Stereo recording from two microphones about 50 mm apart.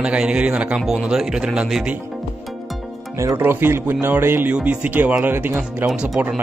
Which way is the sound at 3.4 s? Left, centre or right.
Right.